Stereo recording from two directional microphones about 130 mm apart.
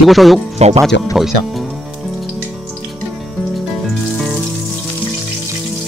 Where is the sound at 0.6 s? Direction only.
55° right (ahead or behind).